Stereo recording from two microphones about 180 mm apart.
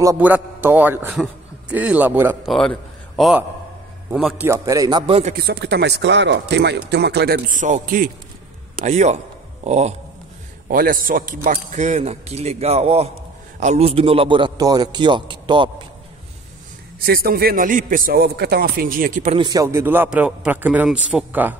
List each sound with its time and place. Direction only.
0.2 s a man's voice: 10° right (ahead or behind)
2.4 s a man's voice: 5° left (ahead or behind)
4.5 s a man's voice: 20° right (ahead or behind)
5.3 s a man's voice: 65° right (ahead or behind); by 9.9 s 40° right (ahead or behind)
10.7 s a man's voice: 50° right (ahead or behind); by 15.7 s 25° right (ahead or behind)
17.0 s a man's voice: 55° right (ahead or behind)
19.3 s a man's voice: 25° right (ahead or behind)